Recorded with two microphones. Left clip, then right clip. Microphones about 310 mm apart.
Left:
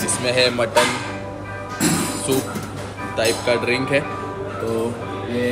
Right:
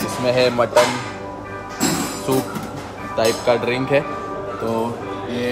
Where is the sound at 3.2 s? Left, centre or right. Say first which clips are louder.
Right 2 dB; right.